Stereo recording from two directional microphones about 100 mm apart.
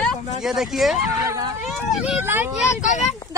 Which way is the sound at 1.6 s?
5° right (ahead or behind).